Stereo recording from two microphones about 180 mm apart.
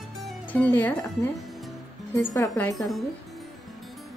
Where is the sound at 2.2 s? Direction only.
10° left (ahead or behind).